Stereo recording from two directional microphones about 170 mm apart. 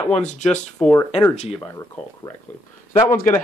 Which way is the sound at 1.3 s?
40° left (ahead or behind).